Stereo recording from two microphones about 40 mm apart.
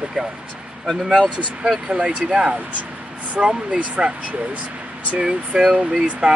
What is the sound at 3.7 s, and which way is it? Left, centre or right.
Speech, right.